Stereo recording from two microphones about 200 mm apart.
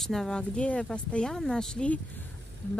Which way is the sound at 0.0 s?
Centre (ahead or behind).